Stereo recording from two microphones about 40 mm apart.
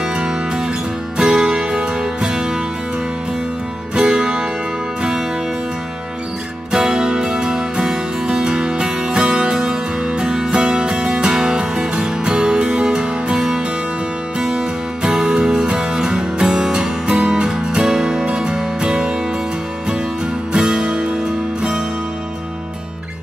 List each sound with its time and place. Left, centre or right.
0.1 s music: right
3.9 s music: right
6.7 s music: centre
15.0 s music: right
20.5 s music: right